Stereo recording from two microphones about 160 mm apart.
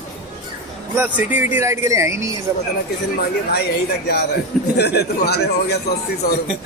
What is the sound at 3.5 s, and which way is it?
A man's voice, 90° left.